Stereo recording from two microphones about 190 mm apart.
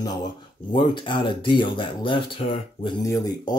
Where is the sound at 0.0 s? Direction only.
25° left (ahead or behind).